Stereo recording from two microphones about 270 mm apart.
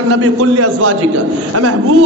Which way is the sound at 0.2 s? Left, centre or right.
Right.